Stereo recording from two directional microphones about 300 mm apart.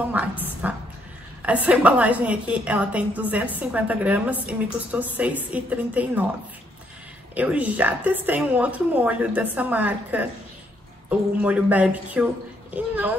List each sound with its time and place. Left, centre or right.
0.0 s a woman's voice: centre
7.3 s a woman's voice: centre